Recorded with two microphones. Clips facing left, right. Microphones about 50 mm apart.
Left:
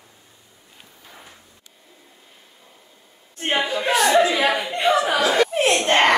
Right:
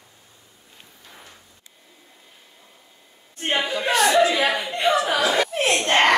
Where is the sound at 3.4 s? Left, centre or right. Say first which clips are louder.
Left 1 dB; centre.